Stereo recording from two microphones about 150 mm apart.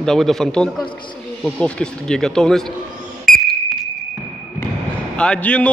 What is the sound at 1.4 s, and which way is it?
Speech, 5° left (ahead or behind).